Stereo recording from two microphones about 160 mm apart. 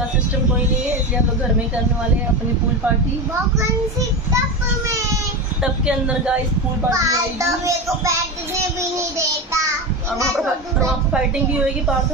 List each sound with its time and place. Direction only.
5.6 s a woman's voice: 5° right (ahead or behind)
6.9 s a child's voice: 20° right (ahead or behind)
11.1 s a woman's voice: 10° right (ahead or behind)